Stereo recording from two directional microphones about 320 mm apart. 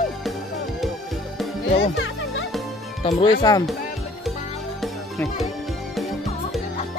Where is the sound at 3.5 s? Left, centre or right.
Centre.